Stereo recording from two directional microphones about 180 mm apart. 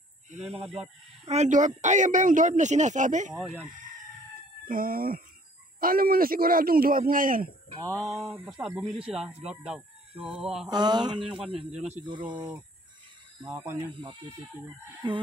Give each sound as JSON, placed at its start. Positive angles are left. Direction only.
{"t": 0.3, "sound": "speech", "side_deg": -40}
{"t": 3.3, "sound": "fowl", "side_deg": -5}
{"t": 4.6, "sound": "speech", "side_deg": -50}
{"t": 8.1, "sound": "fowl", "side_deg": 0}
{"t": 10.2, "sound": "fowl", "side_deg": -5}
{"t": 10.7, "sound": "speech", "side_deg": -25}